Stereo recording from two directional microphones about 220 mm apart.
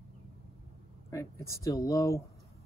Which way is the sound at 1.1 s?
15° left (ahead or behind).